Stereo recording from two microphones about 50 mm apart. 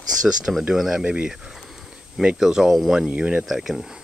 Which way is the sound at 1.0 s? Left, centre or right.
Right.